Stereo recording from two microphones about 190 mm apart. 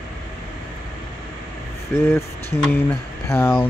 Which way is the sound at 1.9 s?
15° left (ahead or behind).